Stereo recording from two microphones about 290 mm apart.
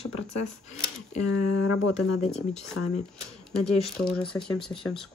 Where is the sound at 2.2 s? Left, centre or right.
Left.